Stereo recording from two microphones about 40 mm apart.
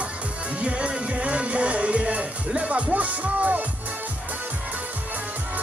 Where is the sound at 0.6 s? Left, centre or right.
Right.